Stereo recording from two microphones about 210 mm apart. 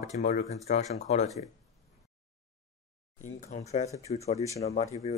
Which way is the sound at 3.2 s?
35° left (ahead or behind).